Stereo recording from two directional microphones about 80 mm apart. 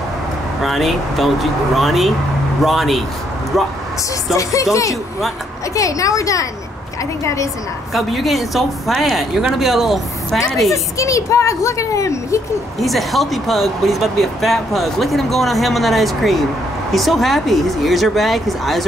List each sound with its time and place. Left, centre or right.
0.6 s speech: centre
4.3 s a woman's voice: left
5.8 s a woman's voice: left
7.9 s speech: centre
10.7 s a woman's voice: left
12.7 s speech: centre